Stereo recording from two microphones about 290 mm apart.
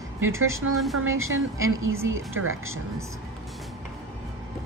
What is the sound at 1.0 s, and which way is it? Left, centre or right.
Speech, right.